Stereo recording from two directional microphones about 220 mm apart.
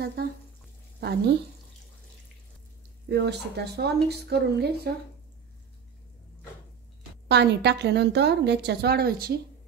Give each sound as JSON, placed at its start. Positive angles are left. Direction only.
{"t": 0.0, "sound": "frying", "side_deg": -45}
{"t": 3.1, "sound": "a woman's voice", "side_deg": -50}
{"t": 7.2, "sound": "a woman's voice", "side_deg": -50}